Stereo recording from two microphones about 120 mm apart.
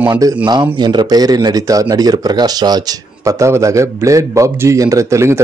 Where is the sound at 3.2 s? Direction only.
25° right (ahead or behind).